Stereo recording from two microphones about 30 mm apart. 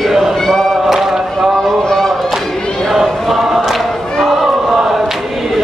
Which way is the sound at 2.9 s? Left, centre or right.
Centre.